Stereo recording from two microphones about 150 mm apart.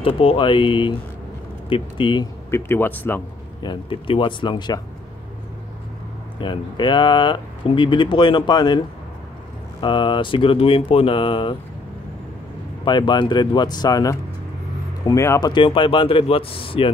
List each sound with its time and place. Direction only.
0.0 s speech: 40° left (ahead or behind)
2.5 s speech: 15° left (ahead or behind)
3.6 s speech: 35° left (ahead or behind)
6.4 s speech: 30° left (ahead or behind)
12.8 s speech: 30° left (ahead or behind)
15.5 s speech: 35° left (ahead or behind)